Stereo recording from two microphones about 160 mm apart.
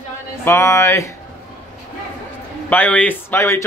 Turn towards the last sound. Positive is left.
turn(degrees=15)  # may be behind; listen again after turning